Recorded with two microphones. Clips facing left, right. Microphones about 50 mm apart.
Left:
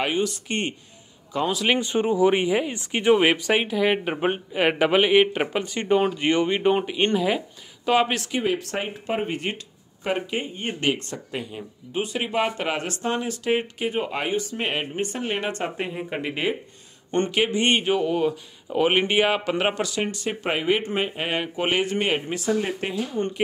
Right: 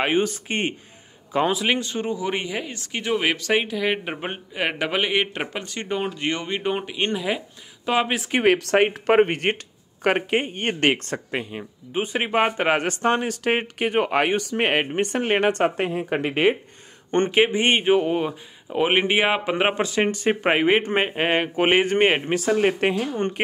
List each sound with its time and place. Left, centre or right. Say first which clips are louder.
0.0 s speech: right 3 dB; right
0.5 s speech: right 2 dB; centre
1.3 s speech: right 4 dB; right
1.8 s speech: left 6 dB; centre
8.4 s speech: right 9 dB; right
11.3 s speech: right 3 dB; right
15.7 s speech: right 5 dB; right
17.1 s speech: right 3 dB; right
18.7 s a man's voice: right 1 dB; centre; by 23.4 s right